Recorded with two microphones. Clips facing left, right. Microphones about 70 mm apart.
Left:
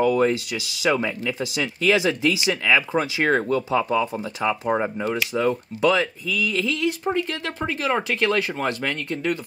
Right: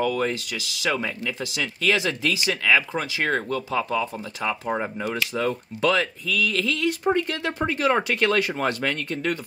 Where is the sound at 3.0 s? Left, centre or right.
Left.